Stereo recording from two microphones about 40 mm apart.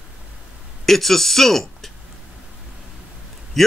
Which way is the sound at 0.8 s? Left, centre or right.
Centre.